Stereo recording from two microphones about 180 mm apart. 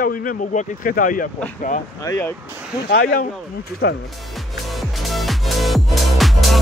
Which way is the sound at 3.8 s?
70° left (ahead or behind).